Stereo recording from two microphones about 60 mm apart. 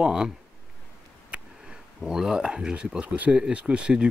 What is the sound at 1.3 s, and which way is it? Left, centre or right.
Speech, centre.